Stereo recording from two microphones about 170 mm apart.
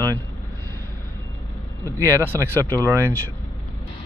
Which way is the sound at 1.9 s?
15° right (ahead or behind).